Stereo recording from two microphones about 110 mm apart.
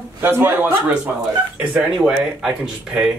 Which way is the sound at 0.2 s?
20° right (ahead or behind).